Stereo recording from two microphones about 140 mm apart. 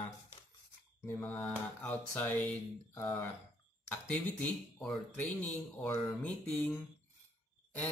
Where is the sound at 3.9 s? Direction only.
10° left (ahead or behind).